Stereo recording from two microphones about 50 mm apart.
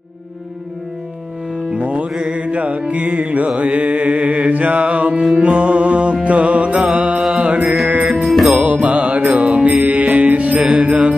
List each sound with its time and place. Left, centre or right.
1.7 s music: right
7.3 s mantra: right
7.6 s music: centre
8.5 s mantra: right
9.8 s music: right
10.9 s music: right